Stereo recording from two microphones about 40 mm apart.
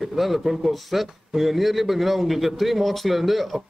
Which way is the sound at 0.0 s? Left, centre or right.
Centre.